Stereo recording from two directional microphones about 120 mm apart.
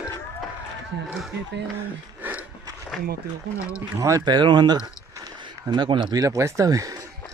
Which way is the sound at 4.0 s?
30° right (ahead or behind).